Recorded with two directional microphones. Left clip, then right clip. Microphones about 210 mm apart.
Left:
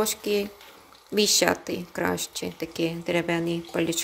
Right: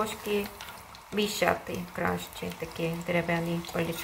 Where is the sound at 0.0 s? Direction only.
60° left (ahead or behind).